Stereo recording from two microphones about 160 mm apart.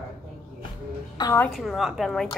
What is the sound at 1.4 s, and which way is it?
Speech, centre (ahead or behind).